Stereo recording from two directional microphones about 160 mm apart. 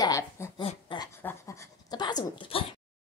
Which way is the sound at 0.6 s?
30° left (ahead or behind).